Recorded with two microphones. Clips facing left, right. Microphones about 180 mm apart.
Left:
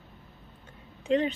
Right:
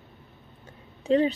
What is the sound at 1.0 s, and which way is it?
Speech, 35° right (ahead or behind).